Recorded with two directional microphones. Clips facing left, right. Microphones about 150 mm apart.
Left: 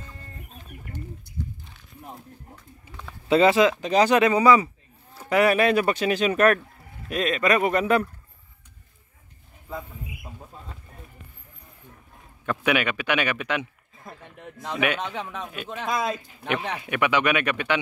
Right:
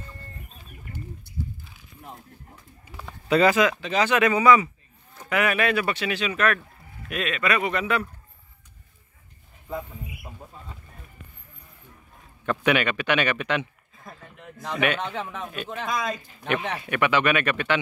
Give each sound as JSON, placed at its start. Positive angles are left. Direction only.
{"t": 3.3, "sound": "speech", "side_deg": 25}
{"t": 3.8, "sound": "speech", "side_deg": 40}
{"t": 12.4, "sound": "a man's voice", "side_deg": 10}